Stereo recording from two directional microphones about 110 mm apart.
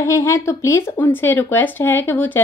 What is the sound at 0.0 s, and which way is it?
Speech, 30° left (ahead or behind).